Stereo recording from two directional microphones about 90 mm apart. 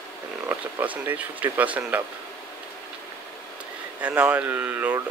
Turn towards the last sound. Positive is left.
turn(degrees=-20)  # may be behind; listen again after turning